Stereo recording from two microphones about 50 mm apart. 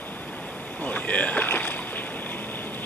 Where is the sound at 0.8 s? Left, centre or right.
Left.